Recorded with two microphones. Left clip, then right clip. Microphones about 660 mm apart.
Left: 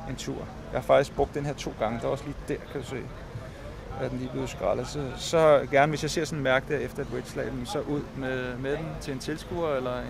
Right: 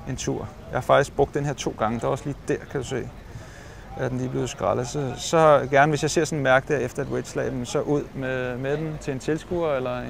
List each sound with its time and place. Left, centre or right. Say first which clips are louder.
0.3 s speech: right 7 dB; right
4.6 s speech: right 3 dB; right